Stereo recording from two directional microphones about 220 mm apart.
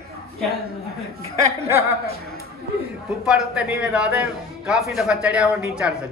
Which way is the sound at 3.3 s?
5° right (ahead or behind).